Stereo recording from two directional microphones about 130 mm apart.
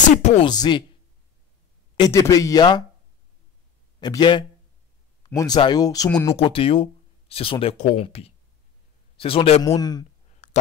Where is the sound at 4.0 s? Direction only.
35° left (ahead or behind).